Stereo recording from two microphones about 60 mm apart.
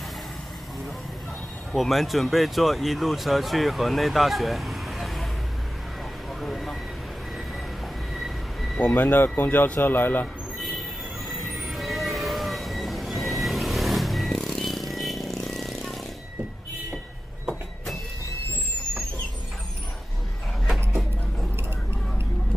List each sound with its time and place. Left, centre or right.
1.7 s speech: centre
6.4 s a sound: centre
8.1 s train: centre
8.9 s speech: left
11.2 s vehicle: centre